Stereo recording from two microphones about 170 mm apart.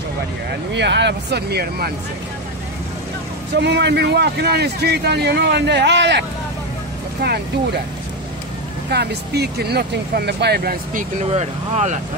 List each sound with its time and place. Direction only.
0.7 s speech: 90° right; by 1.9 s 70° right (ahead or behind)
3.5 s a man's voice: 85° right
7.2 s a man's voice: 70° right (ahead or behind)
8.9 s a man's voice: 70° right (ahead or behind)
11.3 s speech: 40° right (ahead or behind)